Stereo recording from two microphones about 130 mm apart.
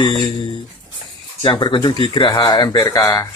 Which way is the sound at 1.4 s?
35° left (ahead or behind).